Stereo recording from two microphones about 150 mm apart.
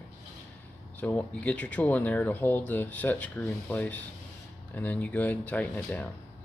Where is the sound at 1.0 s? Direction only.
10° left (ahead or behind).